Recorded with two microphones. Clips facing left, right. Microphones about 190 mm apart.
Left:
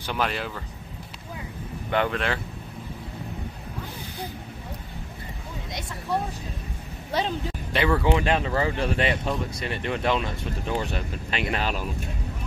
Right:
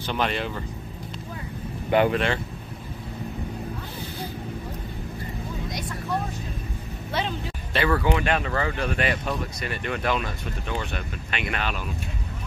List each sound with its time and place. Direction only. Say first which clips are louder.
0.0 s speech: right 2 dB; 5° left (ahead or behind)
1.9 s speech: right 5 dB; 10° right (ahead or behind)
7.7 s speech: left 1 dB; 15° left (ahead or behind); by 11.9 s 35° left (ahead or behind)